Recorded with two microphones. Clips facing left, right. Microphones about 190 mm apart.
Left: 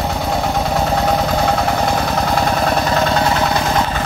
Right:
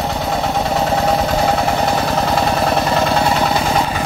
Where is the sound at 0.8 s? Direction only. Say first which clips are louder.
Right 1 dB; centre (ahead or behind).